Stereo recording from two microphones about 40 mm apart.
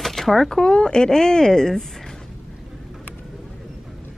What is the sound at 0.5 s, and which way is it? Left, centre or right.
Speech, centre.